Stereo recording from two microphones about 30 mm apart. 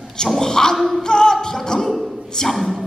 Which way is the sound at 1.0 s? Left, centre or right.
Left.